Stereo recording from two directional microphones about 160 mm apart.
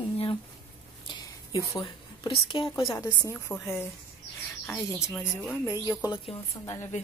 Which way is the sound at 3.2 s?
15° left (ahead or behind).